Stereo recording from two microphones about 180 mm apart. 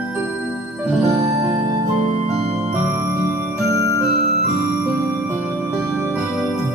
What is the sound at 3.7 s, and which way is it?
Music, 15° left (ahead or behind).